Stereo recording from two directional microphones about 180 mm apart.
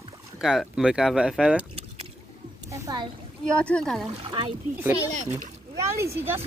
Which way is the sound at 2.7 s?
20° right (ahead or behind).